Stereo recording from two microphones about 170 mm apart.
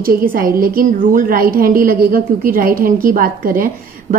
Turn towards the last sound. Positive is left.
turn(degrees=-55)  # may be behind; listen again after turning